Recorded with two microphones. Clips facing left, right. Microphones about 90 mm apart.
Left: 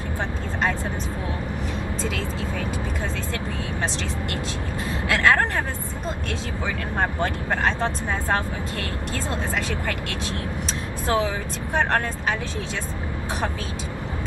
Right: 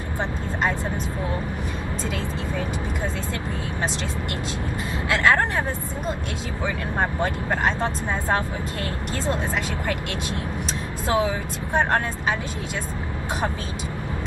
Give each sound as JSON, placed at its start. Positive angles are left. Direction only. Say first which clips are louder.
{"t": 7.0, "sound": "speech", "louder": "even", "side_deg": -15}
{"t": 11.1, "sound": "speech", "louder": "right 1 dB", "side_deg": -15}